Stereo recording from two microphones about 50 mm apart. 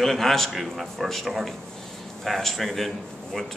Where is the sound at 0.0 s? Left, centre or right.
Centre.